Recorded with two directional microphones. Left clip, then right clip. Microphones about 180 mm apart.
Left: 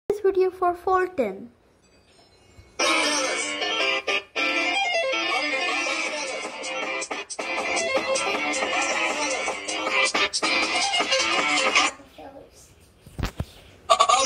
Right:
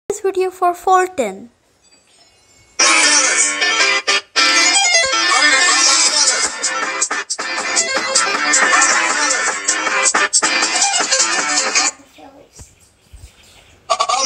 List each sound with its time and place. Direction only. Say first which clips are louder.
0.0 s speech: right 3 dB; centre (ahead or behind)
2.7 s music: right 10 dB; centre (ahead or behind)
3.7 s music: right 7 dB; 45° right (ahead or behind)
10.0 s music: right 8 dB; centre (ahead or behind)